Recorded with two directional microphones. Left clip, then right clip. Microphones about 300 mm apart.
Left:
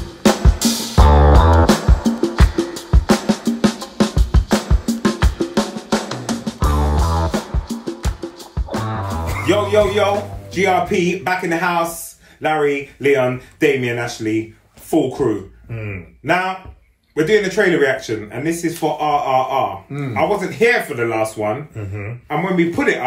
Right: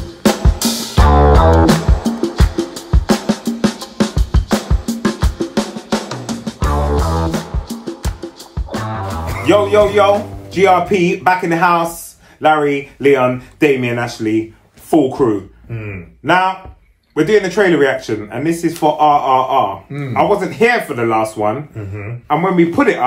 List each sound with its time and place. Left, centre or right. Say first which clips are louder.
0.2 s music: right 1 dB; centre
10.5 s speech: right 5 dB; centre
16.3 s speech: right 5 dB; centre